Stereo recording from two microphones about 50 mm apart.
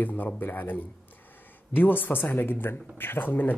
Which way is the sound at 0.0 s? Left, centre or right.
Left.